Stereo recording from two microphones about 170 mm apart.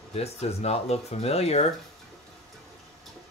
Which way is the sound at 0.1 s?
40° left (ahead or behind).